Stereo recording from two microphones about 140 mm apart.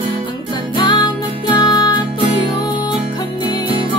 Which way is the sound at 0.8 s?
30° left (ahead or behind).